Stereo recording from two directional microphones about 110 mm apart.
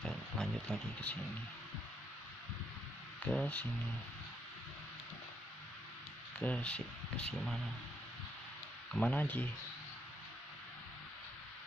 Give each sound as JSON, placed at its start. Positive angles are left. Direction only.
{"t": 0.0, "sound": "a sound", "side_deg": 5}
{"t": 3.3, "sound": "speech", "side_deg": 10}
{"t": 6.4, "sound": "speech", "side_deg": 10}
{"t": 8.9, "sound": "speech", "side_deg": 10}